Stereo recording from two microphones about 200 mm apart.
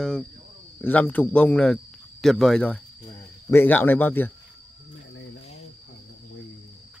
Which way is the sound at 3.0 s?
15° left (ahead or behind).